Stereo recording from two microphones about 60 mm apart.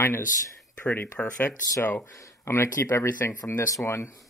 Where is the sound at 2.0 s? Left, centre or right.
Left.